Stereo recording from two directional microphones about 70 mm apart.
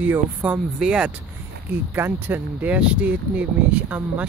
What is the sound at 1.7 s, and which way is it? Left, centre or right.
Speech, right.